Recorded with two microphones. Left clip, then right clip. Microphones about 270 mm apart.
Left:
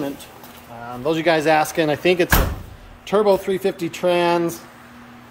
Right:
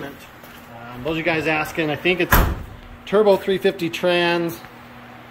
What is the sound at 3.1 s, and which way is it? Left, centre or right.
Speech, centre.